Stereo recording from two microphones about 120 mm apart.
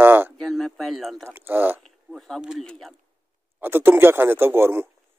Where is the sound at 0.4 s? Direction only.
5° left (ahead or behind).